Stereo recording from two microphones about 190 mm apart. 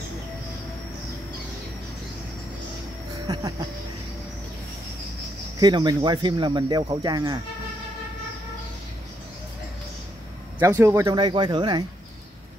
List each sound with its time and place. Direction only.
3.3 s a sound: 20° right (ahead or behind)
5.6 s a man's voice: 20° right (ahead or behind)
10.6 s a man's voice: 15° right (ahead or behind)